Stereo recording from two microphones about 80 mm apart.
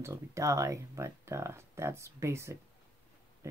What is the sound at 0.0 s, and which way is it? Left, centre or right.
Speech, right.